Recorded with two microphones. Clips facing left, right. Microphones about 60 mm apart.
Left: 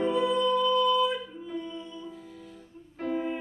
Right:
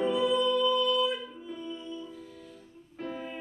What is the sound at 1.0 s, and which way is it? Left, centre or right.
Music, centre.